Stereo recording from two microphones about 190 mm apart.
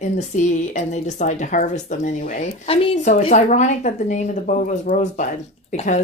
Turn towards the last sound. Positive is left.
turn(degrees=40)  # may be behind; listen again after turning